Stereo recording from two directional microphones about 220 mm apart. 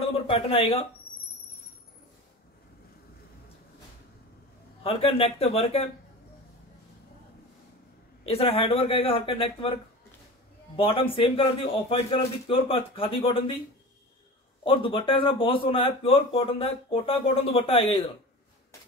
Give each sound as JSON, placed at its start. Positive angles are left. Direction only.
{"t": 0.3, "sound": "a man's voice", "side_deg": 25}
{"t": 4.8, "sound": "a man's voice", "side_deg": 25}
{"t": 8.3, "sound": "a man's voice", "side_deg": 25}
{"t": 10.8, "sound": "a man's voice", "side_deg": 25}
{"t": 14.6, "sound": "a man's voice", "side_deg": 25}